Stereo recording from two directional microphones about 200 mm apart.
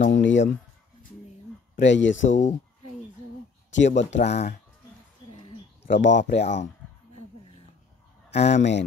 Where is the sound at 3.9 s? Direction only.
35° left (ahead or behind).